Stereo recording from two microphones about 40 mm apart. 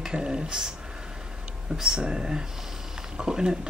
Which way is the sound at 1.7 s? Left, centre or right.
Centre.